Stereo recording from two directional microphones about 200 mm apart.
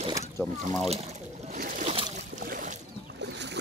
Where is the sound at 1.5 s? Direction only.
40° right (ahead or behind).